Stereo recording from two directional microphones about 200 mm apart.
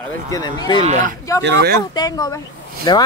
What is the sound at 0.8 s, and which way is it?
Speech, 35° right (ahead or behind).